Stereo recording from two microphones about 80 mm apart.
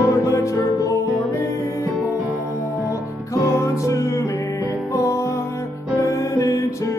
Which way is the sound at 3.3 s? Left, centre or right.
Left.